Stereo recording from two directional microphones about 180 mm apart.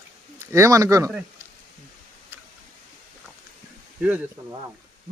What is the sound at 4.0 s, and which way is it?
Speech, 10° right (ahead or behind).